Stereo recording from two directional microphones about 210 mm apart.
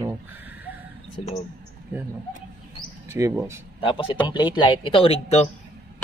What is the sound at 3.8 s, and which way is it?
A man's voice, 25° left (ahead or behind).